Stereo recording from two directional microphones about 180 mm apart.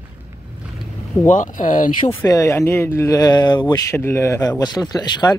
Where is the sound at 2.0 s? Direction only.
20° left (ahead or behind).